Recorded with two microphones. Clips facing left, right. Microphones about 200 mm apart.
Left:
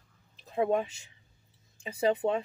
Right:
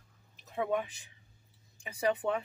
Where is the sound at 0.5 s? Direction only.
30° left (ahead or behind).